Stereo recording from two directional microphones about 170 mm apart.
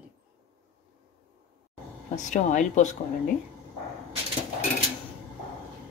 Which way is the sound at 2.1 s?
45° left (ahead or behind).